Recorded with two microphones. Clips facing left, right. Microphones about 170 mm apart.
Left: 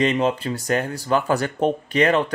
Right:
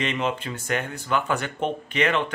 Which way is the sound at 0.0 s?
35° left (ahead or behind).